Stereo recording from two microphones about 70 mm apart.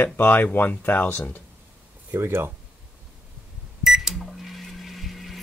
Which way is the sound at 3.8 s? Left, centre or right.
Centre.